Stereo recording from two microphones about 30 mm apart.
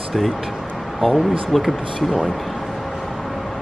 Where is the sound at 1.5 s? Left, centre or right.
Centre.